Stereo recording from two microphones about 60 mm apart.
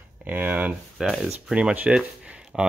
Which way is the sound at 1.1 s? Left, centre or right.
Centre.